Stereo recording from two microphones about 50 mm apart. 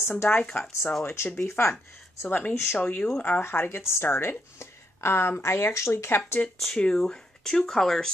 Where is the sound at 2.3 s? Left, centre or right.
Left.